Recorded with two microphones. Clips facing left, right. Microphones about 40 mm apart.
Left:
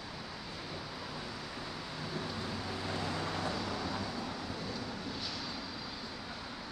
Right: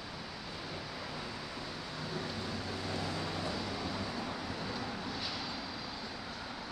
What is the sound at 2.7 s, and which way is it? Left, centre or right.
Vehicle, centre.